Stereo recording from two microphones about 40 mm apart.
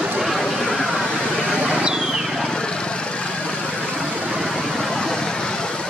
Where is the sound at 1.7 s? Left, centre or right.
Centre.